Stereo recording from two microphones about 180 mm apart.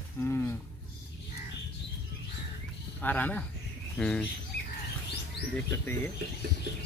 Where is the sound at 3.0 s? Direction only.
10° left (ahead or behind).